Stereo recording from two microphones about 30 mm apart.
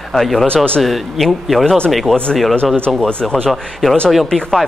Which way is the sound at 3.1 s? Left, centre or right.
Left.